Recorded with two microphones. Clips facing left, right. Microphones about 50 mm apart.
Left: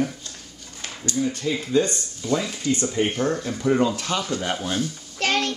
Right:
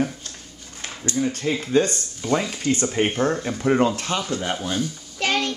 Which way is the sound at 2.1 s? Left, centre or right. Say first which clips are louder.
Right 2 dB; right.